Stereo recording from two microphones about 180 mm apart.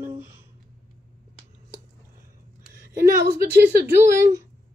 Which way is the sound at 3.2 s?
65° right (ahead or behind).